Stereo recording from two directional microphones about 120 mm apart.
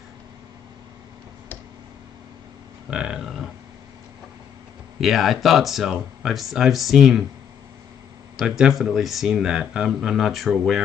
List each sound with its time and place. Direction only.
2.9 s speech: 5° right (ahead or behind)
5.0 s speech: centre (ahead or behind)
8.4 s speech: 5° right (ahead or behind)